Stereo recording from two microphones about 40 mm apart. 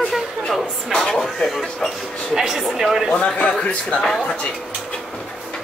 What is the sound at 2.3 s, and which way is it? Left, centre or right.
Speech, centre.